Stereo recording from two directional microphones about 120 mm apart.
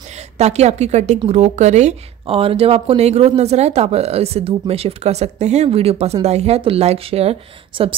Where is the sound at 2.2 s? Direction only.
50° right (ahead or behind).